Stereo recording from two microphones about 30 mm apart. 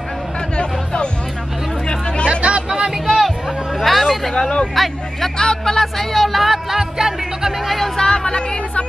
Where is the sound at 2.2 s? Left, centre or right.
Right.